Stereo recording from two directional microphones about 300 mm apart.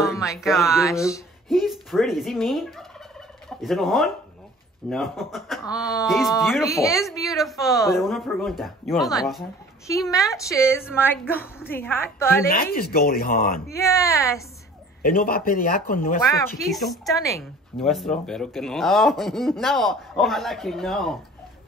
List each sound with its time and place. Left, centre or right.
0.0 s speech: centre
0.8 s speech: centre
1.6 s speech: centre
3.4 s fowl: centre
4.8 s speech: centre
11.0 s a woman's voice: centre
12.4 s speech: left
13.8 s a woman's voice: centre
15.0 s speech: left
16.6 s speech: centre
17.1 s a woman's voice: centre